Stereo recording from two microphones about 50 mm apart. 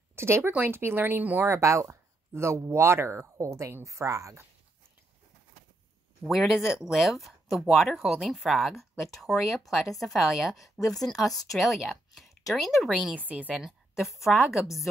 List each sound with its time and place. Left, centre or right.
0.1 s speech: right
1.5 s speech: right
6.2 s speech: centre
10.9 s speech: centre
13.1 s a woman's voice: right
13.6 s speech: centre